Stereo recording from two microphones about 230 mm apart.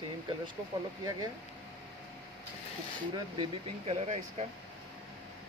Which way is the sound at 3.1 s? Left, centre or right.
Right.